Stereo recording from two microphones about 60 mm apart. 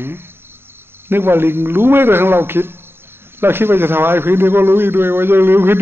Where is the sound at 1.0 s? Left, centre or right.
Right.